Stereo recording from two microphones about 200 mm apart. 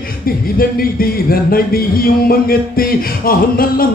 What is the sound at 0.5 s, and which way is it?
A man's voice, 45° left (ahead or behind).